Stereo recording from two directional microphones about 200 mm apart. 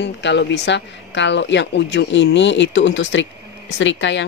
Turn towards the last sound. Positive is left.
turn(degrees=65)  # may be behind; listen again after turning